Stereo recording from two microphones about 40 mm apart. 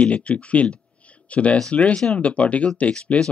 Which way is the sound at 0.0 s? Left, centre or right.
Left.